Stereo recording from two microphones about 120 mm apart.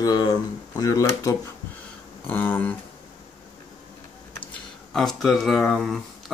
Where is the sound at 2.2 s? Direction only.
15° left (ahead or behind).